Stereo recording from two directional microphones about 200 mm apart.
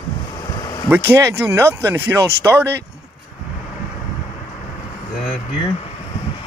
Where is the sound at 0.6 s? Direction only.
15° left (ahead or behind).